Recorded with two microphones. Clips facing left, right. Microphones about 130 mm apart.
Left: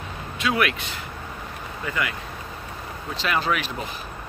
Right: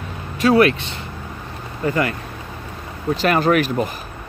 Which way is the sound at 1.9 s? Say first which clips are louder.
Right 8 dB; 45° right (ahead or behind).